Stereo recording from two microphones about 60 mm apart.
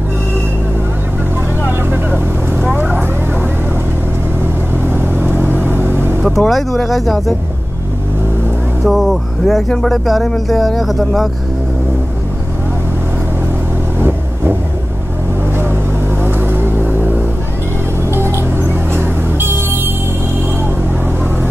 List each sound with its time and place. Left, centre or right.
1.9 s vehicle: right
4.8 s vehicle: right
6.2 s speech: centre
8.8 s speech: centre
13.9 s vehicle: right
15.5 s vehicle: right
18.1 s music: right